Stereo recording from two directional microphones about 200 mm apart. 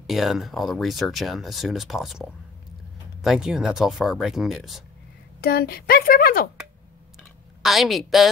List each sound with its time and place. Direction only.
0.0 s speech: centre (ahead or behind)
5.4 s speech: 50° left (ahead or behind)
7.6 s speech: centre (ahead or behind)